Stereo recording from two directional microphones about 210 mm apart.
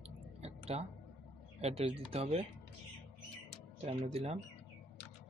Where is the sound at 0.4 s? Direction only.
30° right (ahead or behind).